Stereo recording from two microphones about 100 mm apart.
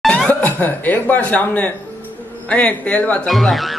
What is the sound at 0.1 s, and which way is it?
Speech, 15° left (ahead or behind).